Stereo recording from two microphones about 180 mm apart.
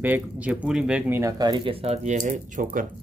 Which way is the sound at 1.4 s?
25° right (ahead or behind).